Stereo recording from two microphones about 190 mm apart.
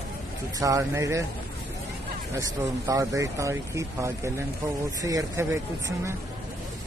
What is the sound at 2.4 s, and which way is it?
Speech, 20° right (ahead or behind).